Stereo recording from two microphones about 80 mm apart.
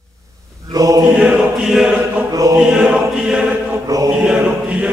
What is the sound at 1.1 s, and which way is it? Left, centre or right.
Chant, centre.